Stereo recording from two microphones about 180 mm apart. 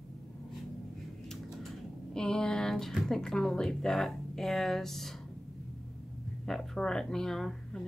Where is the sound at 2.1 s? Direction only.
5° left (ahead or behind).